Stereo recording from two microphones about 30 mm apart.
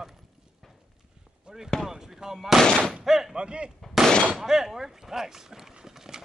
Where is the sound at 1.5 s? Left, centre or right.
Right.